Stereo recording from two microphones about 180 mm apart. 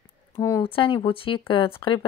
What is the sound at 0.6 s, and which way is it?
Speech, 30° left (ahead or behind).